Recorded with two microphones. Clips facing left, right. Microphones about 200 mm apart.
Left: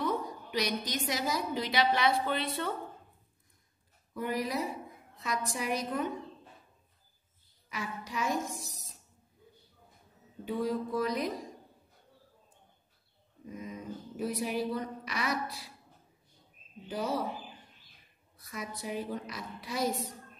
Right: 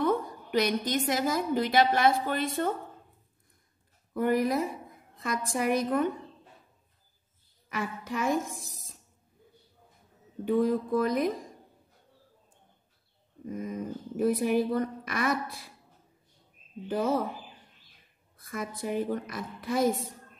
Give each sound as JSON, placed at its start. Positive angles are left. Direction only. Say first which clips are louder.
{"t": 0.0, "sound": "a woman's voice", "louder": "right 5 dB", "side_deg": -55}
{"t": 4.1, "sound": "a woman's voice", "louder": "right 7 dB", "side_deg": -55}
{"t": 7.7, "sound": "a woman's voice", "louder": "right 5 dB", "side_deg": -55}
{"t": 10.4, "sound": "a woman's voice", "louder": "right 7 dB", "side_deg": -55}
{"t": 13.5, "sound": "a woman's voice", "louder": "right 6 dB", "side_deg": -50}
{"t": 16.8, "sound": "a woman's voice", "louder": "right 6 dB", "side_deg": -50}
{"t": 18.4, "sound": "a woman's voice", "louder": "right 5 dB", "side_deg": -50}